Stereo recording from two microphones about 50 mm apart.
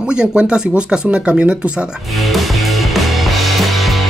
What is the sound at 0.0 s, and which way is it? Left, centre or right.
Speech, centre.